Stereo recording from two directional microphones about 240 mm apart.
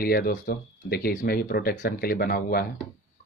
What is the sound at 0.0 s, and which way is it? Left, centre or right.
Speech, left.